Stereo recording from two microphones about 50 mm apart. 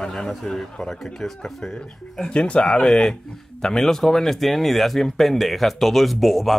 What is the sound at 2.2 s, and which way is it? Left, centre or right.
Speech, left.